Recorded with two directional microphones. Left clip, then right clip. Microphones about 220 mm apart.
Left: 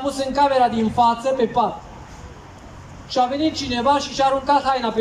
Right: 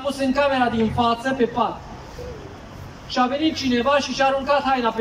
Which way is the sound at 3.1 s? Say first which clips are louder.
Left 1 dB; 20° left (ahead or behind).